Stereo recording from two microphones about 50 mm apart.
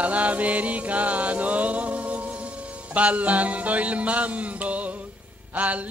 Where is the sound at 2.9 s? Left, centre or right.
Right.